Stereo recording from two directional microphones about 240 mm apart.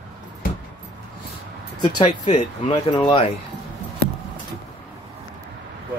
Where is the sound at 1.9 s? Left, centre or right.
Left.